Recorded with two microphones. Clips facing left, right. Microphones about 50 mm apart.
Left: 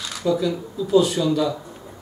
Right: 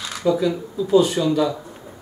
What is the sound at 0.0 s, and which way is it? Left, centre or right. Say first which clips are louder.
Speech: right 2 dB; centre.